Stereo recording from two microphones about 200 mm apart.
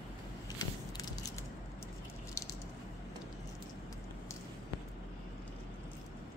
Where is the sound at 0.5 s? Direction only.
20° left (ahead or behind).